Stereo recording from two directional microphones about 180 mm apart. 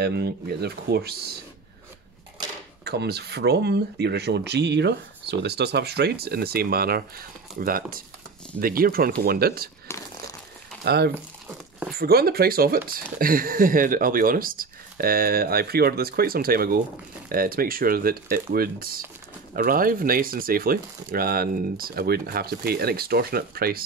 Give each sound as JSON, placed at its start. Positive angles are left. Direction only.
{"t": 0.0, "sound": "speech", "side_deg": -65}
{"t": 2.8, "sound": "speech", "side_deg": -65}
{"t": 10.9, "sound": "speech", "side_deg": -65}